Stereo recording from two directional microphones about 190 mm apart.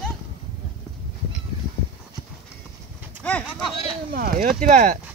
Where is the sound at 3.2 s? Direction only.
5° left (ahead or behind).